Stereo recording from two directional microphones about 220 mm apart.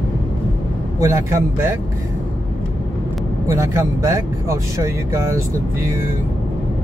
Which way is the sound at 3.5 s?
15° right (ahead or behind).